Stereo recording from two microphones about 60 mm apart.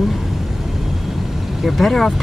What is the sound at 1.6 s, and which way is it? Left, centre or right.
Speech, centre.